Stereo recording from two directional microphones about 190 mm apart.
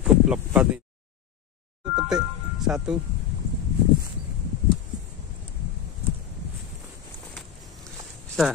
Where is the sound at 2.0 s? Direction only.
5° right (ahead or behind).